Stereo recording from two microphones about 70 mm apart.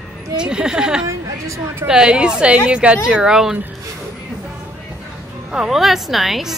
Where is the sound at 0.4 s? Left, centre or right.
Centre.